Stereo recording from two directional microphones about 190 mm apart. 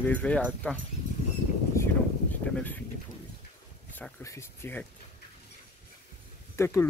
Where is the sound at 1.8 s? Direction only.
15° left (ahead or behind).